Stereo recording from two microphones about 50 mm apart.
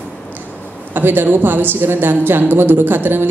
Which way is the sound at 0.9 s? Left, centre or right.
Right.